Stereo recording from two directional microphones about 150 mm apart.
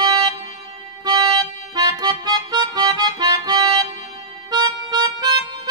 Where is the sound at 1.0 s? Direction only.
25° right (ahead or behind).